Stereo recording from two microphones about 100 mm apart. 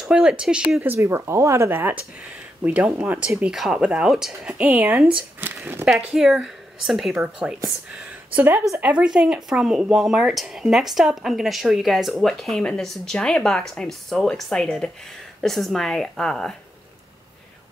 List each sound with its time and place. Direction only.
0.0 s speech: 5° right (ahead or behind)
0.8 s speech: 25° right (ahead or behind)
3.3 s speech: 5° right (ahead or behind)
8.3 s speech: 15° right (ahead or behind); by 16.5 s 5° left (ahead or behind)